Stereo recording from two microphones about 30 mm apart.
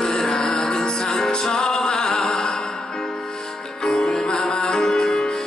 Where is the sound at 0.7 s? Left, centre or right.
Left.